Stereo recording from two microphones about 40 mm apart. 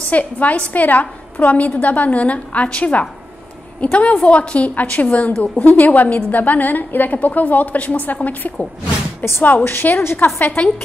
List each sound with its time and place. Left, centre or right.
0.1 s a woman's voice: left
9.2 s a woman's voice: left
10.4 s a woman's voice: left